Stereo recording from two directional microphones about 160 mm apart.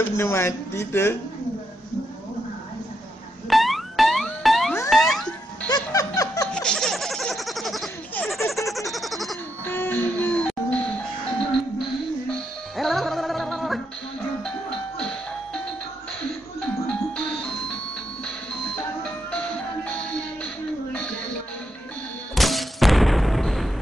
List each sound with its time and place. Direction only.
0.0 s speech: 15° left (ahead or behind)
3.4 s music: centre (ahead or behind)
5.7 s laughter: 25° left (ahead or behind)
6.5 s a sound: 5° left (ahead or behind)
8.6 s vehicle: centre (ahead or behind)
9.7 s music: 15° left (ahead or behind)
12.3 s music: centre (ahead or behind)
16.8 s music: 5° left (ahead or behind)
19.0 s music: 10° left (ahead or behind)